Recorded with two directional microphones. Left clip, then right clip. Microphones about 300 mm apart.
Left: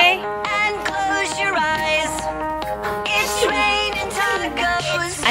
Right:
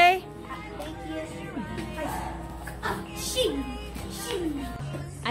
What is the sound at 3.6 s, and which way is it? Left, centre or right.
Music, left.